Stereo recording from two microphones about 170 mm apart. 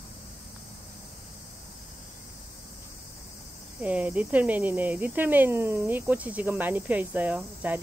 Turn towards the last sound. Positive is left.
turn(degrees=-10)  # may be behind; listen again after turning